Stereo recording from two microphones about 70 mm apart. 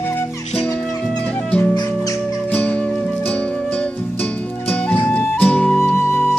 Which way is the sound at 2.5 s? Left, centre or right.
Left.